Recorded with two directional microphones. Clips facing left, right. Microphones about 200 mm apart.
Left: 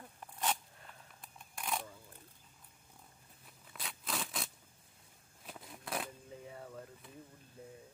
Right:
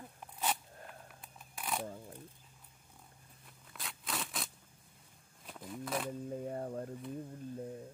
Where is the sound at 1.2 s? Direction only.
5° right (ahead or behind).